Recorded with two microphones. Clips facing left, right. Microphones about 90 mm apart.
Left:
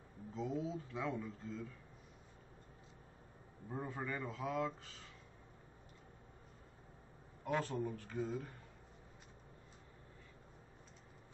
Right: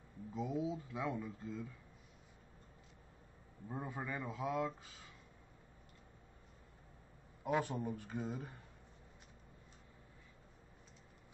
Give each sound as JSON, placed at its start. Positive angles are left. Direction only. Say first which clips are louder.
{"t": 0.3, "sound": "speech", "louder": "right 1 dB", "side_deg": -10}
{"t": 3.6, "sound": "speech", "louder": "even", "side_deg": -10}
{"t": 7.4, "sound": "speech", "louder": "right 1 dB", "side_deg": -10}